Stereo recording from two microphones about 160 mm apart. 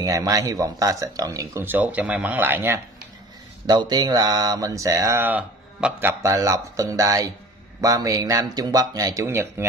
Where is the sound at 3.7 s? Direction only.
25° right (ahead or behind).